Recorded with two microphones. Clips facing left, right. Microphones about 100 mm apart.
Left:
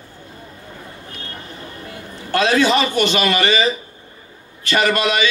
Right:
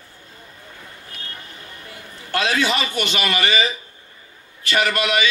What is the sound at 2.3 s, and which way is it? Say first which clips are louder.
A man's voice: left 5 dB; 30° left (ahead or behind).